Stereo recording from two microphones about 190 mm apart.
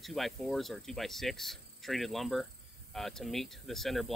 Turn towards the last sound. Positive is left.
turn(degrees=0)  # may be behind; listen again after turning